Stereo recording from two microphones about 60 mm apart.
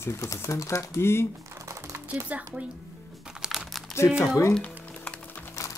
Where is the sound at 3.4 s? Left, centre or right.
Centre.